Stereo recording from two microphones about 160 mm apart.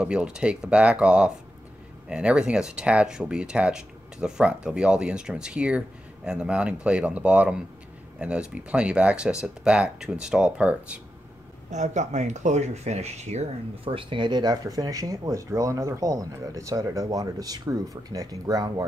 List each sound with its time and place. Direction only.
0.0 s speech: 5° right (ahead or behind)
11.7 s speech: 45° right (ahead or behind); by 18.9 s 20° right (ahead or behind)